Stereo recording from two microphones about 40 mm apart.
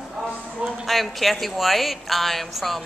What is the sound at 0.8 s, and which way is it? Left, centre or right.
Speech, centre.